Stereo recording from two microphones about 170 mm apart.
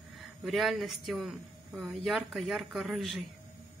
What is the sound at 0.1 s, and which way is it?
Speech, centre (ahead or behind).